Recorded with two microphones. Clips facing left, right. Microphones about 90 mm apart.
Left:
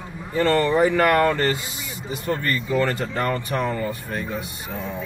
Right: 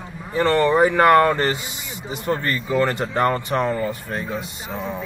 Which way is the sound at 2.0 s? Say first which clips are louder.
Right 2 dB; 25° right (ahead or behind).